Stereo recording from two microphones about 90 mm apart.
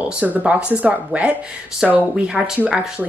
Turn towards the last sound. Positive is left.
turn(degrees=-15)  # may be behind; listen again after turning